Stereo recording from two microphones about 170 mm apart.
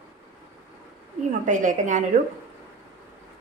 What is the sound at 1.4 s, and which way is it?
Speech, 45° right (ahead or behind).